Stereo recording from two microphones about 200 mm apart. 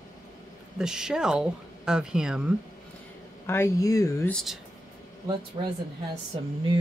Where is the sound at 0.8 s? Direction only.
5° right (ahead or behind).